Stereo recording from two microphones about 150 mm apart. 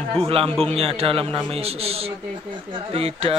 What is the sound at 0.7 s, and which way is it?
Speech, 40° right (ahead or behind).